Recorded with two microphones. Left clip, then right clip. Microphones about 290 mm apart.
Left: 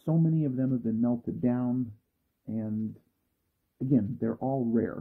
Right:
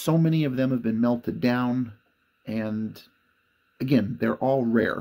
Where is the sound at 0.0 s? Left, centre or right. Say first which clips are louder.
Right 6 dB; right.